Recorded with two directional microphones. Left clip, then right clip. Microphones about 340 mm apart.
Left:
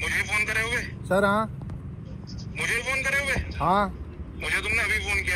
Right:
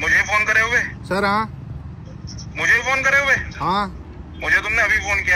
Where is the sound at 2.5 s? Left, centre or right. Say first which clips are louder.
Right 9 dB; right.